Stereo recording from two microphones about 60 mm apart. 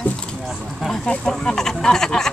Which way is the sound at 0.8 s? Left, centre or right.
Centre.